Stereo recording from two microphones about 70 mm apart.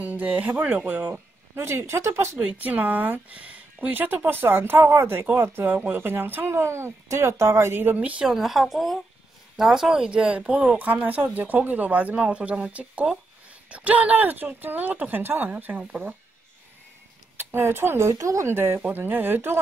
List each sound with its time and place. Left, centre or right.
0.0 s a woman's voice: right
1.1 s speech: right
2.4 s speech: right
8.3 s a woman's voice: centre
17.4 s speech: right
18.5 s speech: right
18.8 s a woman's voice: right